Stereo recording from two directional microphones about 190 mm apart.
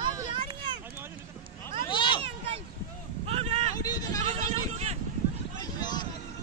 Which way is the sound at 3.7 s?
20° left (ahead or behind).